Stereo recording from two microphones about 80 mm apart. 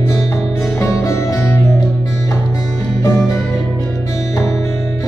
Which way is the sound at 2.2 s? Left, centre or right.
Left.